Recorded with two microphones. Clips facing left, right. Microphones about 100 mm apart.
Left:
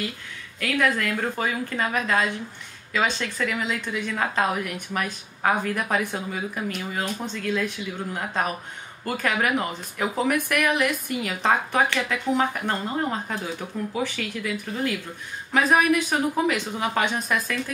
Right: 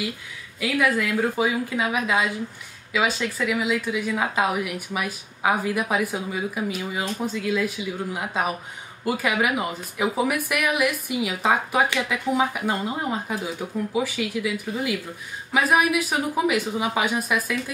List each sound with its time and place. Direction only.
0.6 s speech: 5° right (ahead or behind)